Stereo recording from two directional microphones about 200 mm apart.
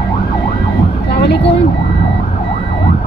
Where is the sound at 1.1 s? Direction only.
55° left (ahead or behind).